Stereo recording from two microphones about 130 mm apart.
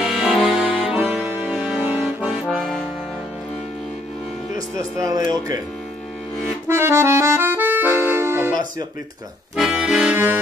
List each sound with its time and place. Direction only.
0.0 s music: 5° right (ahead or behind)
0.7 s accordion: 10° right (ahead or behind)
4.6 s speech: 25° right (ahead or behind)
6.7 s music: 20° right (ahead or behind)
9.6 s accordion: 5° right (ahead or behind)